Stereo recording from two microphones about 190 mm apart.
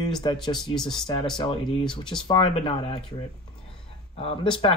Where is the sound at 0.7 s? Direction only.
Centre (ahead or behind).